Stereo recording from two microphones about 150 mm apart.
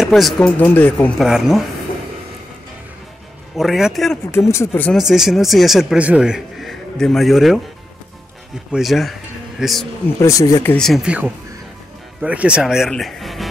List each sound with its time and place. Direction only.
0.0 s speech: centre (ahead or behind)
1.2 s speech: 5° right (ahead or behind)
3.5 s speech: centre (ahead or behind)
4.5 s speech: 15° left (ahead or behind)
4.9 s speech: 5° right (ahead or behind)
8.7 s speech: centre (ahead or behind)
10.2 s speech: 20° left (ahead or behind)
10.7 s speech: centre (ahead or behind)